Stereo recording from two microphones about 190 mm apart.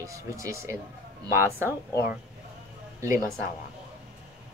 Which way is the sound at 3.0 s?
15° right (ahead or behind).